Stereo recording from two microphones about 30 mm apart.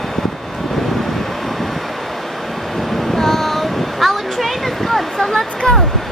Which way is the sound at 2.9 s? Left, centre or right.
Centre.